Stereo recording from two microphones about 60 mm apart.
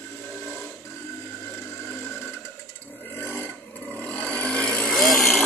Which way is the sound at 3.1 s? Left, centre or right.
Left.